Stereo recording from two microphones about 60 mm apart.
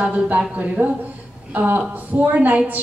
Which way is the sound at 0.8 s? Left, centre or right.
Right.